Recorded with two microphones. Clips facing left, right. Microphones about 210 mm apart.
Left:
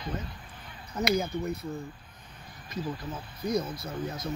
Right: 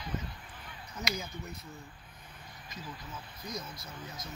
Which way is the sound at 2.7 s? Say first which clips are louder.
Left 11 dB; 60° left (ahead or behind).